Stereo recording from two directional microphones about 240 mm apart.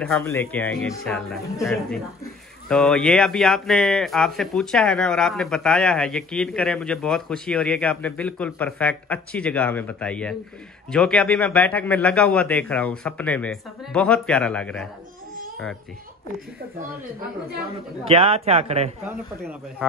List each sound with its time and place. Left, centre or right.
0.0 s speech: centre
18.0 s a man's voice: right